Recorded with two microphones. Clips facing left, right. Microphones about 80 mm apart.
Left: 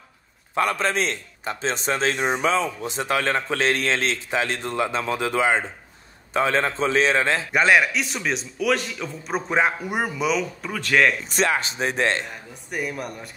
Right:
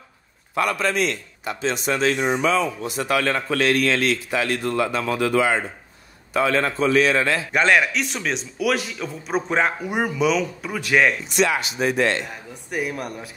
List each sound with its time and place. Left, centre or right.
0.6 s a man's voice: left
7.5 s a man's voice: centre
10.7 s speech: centre
11.2 s a man's voice: left
12.6 s a man's voice: centre